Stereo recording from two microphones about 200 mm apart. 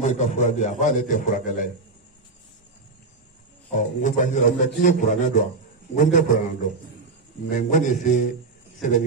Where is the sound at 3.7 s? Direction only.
40° left (ahead or behind).